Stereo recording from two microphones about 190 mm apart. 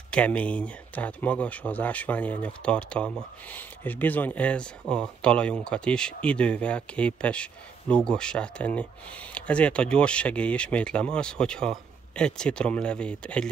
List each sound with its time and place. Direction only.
0.1 s speech: 5° left (ahead or behind)